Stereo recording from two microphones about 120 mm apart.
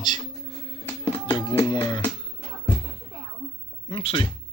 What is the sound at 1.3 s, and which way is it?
Music, 40° left (ahead or behind).